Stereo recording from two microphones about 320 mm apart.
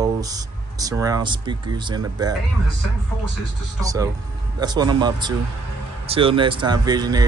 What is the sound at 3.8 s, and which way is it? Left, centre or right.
Speech, centre.